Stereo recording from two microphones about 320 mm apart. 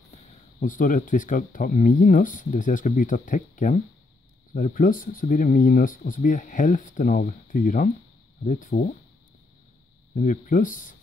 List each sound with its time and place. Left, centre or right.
0.1 s speech: left
10.1 s speech: left